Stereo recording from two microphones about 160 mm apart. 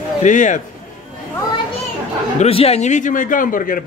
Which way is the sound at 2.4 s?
40° left (ahead or behind).